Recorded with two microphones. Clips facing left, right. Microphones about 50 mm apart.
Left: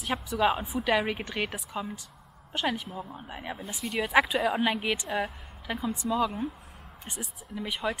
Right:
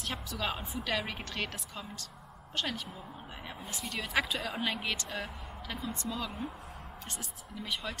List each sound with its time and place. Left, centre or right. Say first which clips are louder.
0.0 s a woman's voice: left 10 dB; centre
3.5 s speech: left 4 dB; centre
3.9 s speech: left 8 dB; centre